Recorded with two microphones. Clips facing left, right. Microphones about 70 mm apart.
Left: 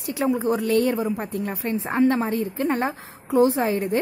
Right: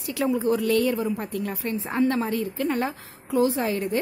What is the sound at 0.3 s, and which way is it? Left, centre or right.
A woman's voice, left.